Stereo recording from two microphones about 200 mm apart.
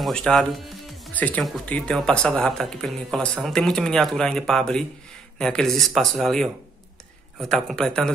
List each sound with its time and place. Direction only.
0.0 s speech: centre (ahead or behind)